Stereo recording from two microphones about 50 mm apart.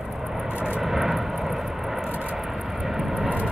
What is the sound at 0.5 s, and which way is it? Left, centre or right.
Vehicle, right.